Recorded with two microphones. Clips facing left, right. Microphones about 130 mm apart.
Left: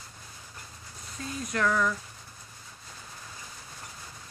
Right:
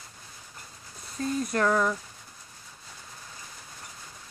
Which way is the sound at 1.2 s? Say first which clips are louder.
Right 4 dB; 40° right (ahead or behind).